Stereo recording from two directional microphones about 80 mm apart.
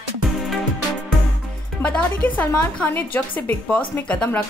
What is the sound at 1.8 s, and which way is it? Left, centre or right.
A woman's voice, centre.